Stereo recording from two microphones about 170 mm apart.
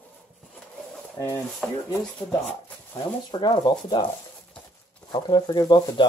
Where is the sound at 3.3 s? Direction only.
25° left (ahead or behind).